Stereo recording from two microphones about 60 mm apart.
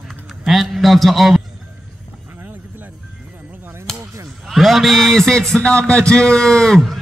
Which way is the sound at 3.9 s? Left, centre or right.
Centre.